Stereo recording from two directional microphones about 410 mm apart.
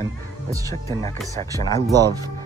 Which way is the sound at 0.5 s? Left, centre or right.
Centre.